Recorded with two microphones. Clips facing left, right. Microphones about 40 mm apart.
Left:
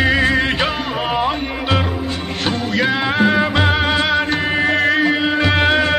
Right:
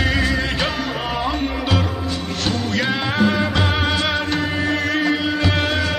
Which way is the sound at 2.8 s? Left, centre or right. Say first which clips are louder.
Left 4 dB; centre.